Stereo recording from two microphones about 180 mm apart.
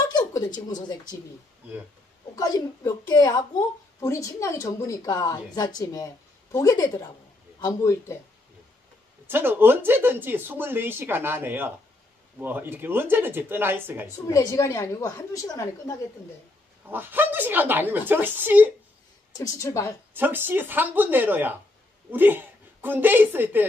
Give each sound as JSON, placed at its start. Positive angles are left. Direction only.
{"t": 0.0, "sound": "a woman's voice", "side_deg": 20}
{"t": 2.3, "sound": "a woman's voice", "side_deg": 20}
{"t": 9.3, "sound": "speech", "side_deg": -10}
{"t": 14.2, "sound": "a woman's voice", "side_deg": 20}
{"t": 16.9, "sound": "speech", "side_deg": -10}
{"t": 19.3, "sound": "a woman's voice", "side_deg": 20}
{"t": 20.2, "sound": "a woman's voice", "side_deg": -10}